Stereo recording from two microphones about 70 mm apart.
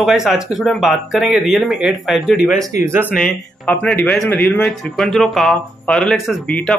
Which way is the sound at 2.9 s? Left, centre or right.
Right.